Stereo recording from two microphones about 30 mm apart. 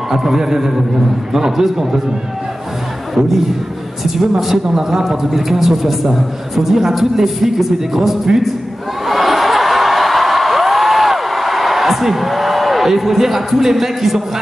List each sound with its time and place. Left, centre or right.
0.1 s a man's voice: centre
4.0 s a man's voice: centre
9.0 s a sound: centre